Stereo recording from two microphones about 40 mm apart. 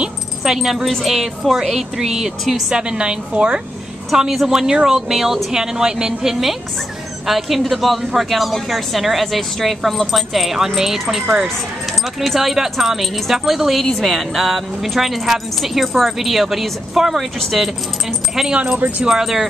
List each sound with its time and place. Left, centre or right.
0.0 s speech: centre
2.7 s a woman's voice: right
4.1 s speech: centre
7.2 s speech: centre
18.5 s a woman's voice: right
19.0 s speech: centre